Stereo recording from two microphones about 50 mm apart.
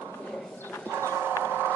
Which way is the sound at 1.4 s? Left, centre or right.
Right.